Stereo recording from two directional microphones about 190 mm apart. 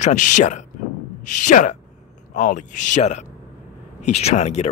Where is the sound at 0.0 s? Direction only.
40° left (ahead or behind).